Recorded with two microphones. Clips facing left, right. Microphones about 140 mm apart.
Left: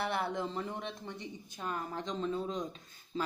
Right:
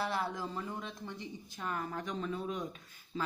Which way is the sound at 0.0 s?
65° left (ahead or behind).